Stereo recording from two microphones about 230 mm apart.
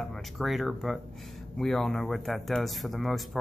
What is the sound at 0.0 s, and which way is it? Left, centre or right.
A man's voice, centre.